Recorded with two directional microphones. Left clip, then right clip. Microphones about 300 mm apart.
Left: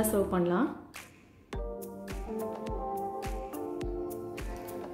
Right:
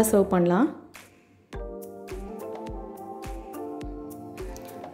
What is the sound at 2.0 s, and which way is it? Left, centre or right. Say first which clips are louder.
Music: even; centre.